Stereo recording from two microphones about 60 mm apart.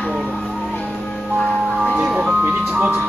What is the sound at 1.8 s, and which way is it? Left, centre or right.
Ice cream truck, centre.